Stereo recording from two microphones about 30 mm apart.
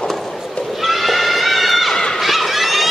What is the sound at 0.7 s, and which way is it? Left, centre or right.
Horse, centre.